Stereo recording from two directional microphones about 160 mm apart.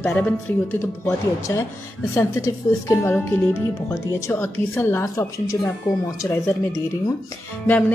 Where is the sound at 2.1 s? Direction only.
15° left (ahead or behind).